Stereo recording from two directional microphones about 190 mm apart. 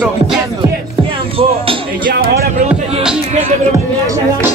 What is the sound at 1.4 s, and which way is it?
Speech, 30° right (ahead or behind).